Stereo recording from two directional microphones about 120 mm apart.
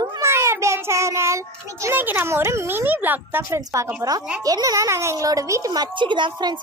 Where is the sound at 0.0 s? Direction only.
35° right (ahead or behind).